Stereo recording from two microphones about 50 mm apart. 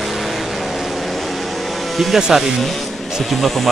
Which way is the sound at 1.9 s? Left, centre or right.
Centre.